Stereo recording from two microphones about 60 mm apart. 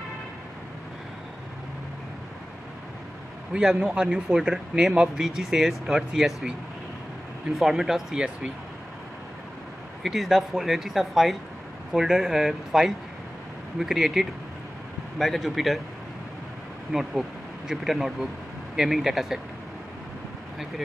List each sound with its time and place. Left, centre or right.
3.6 s speech: centre
7.5 s speech: centre
10.0 s speech: centre
16.9 s speech: centre